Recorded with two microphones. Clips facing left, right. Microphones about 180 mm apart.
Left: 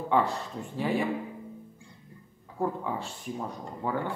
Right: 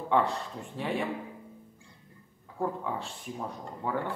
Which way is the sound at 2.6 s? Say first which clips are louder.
Left 2 dB; 5° left (ahead or behind).